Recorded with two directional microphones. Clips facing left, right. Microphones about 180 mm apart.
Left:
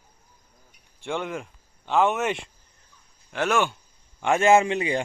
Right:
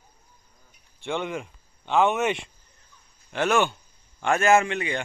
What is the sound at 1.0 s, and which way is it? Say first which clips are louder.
A man's voice: right 1 dB; 5° left (ahead or behind).